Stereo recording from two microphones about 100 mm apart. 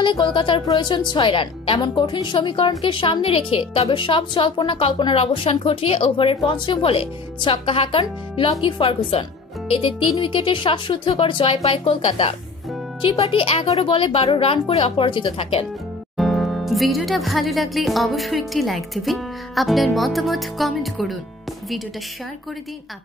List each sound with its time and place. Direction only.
0.0 s a woman's voice: 50° left (ahead or behind)
1.8 s a woman's voice: 45° left (ahead or behind); by 9.2 s 60° left (ahead or behind)
10.2 s a woman's voice: 55° left (ahead or behind); by 15.0 s 80° left
15.0 s speech: 65° left (ahead or behind)
16.2 s speech: centre (ahead or behind)